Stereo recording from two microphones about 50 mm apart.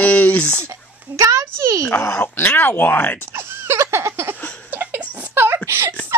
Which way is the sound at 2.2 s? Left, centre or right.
Left.